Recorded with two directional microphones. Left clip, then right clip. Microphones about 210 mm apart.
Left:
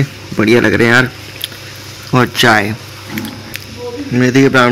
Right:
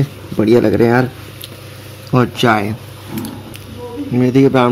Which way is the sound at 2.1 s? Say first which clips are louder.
Left 4 dB; 5° right (ahead or behind).